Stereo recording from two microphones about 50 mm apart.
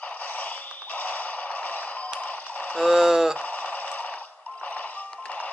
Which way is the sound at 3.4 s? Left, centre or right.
Left.